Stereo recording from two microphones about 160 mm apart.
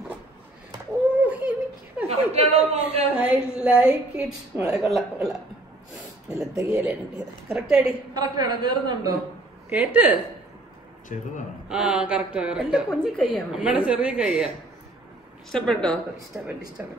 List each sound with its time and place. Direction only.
1.1 s a sound: 10° right (ahead or behind)
2.0 s a man's voice: 40° right (ahead or behind)
3.2 s a woman's voice: 5° right (ahead or behind)
6.2 s a woman's voice: 5° right (ahead or behind)
8.1 s a man's voice: 25° right (ahead or behind)
9.7 s a woman's voice: 10° right (ahead or behind)
11.1 s a man's voice: 50° left (ahead or behind)
11.7 s a woman's voice: 5° right (ahead or behind)
15.5 s a woman's voice: 5° left (ahead or behind)
16.3 s a woman's voice: 5° right (ahead or behind)